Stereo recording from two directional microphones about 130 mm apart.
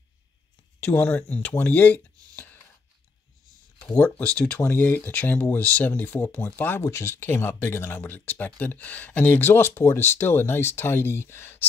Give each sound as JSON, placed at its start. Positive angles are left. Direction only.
{"t": 0.7, "sound": "speech", "side_deg": 15}
{"t": 3.9, "sound": "speech", "side_deg": 10}